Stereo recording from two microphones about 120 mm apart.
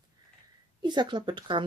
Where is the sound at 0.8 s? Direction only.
40° right (ahead or behind).